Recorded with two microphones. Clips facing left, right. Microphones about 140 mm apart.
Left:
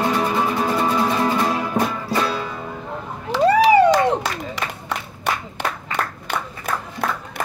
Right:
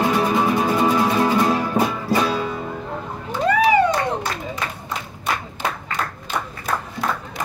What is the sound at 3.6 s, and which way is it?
Clapping, 90° left.